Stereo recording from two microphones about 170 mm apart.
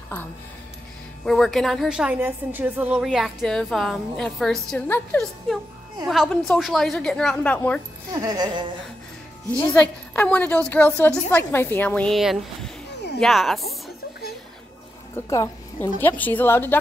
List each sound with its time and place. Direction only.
1.2 s a woman's voice: centre (ahead or behind)
4.6 s speech: 10° left (ahead or behind)
6.0 s a woman's voice: centre (ahead or behind)
8.1 s speech: 20° right (ahead or behind)
9.6 s a woman's voice: 20° left (ahead or behind)
10.1 s a woman's voice: 10° left (ahead or behind)
15.1 s a woman's voice: 20° left (ahead or behind)